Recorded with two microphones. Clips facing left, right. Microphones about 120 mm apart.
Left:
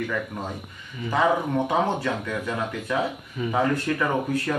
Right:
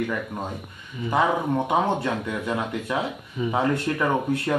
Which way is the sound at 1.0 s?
15° right (ahead or behind).